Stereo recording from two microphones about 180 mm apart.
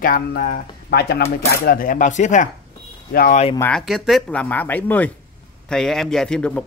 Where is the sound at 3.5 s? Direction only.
10° left (ahead or behind).